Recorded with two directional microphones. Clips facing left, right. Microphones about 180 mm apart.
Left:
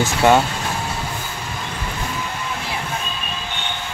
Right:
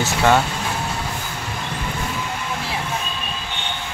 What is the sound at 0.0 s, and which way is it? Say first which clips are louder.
Speech: left 2 dB; 15° left (ahead or behind).